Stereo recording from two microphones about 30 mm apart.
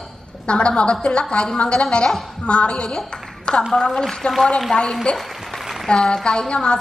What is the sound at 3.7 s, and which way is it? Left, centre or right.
Speech, left.